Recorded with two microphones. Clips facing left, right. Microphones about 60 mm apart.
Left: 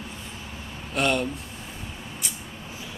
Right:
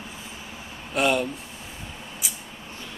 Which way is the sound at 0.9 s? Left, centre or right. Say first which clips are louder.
Right 2 dB; centre.